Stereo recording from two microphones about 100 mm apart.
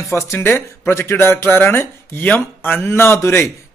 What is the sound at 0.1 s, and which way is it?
Speech, 25° left (ahead or behind).